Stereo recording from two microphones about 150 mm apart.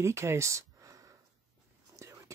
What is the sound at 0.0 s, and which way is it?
Speech, 20° right (ahead or behind).